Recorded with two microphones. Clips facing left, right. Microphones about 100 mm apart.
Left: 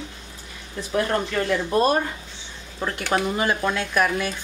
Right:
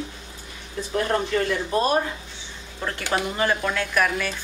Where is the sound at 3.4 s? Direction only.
15° left (ahead or behind).